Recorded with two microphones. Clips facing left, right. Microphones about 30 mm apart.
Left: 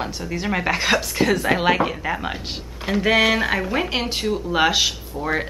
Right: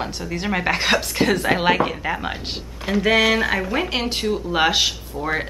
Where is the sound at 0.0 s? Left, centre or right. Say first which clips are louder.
Even; centre.